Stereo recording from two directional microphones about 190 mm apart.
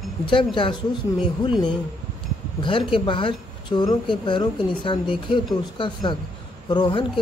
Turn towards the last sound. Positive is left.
turn(degrees=25)  # may be behind; listen again after turning